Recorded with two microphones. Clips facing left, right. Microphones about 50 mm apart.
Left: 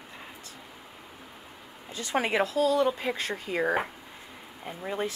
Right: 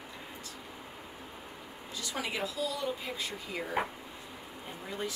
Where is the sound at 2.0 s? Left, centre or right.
Left.